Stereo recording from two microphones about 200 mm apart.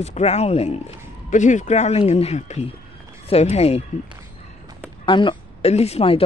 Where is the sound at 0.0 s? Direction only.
35° left (ahead or behind).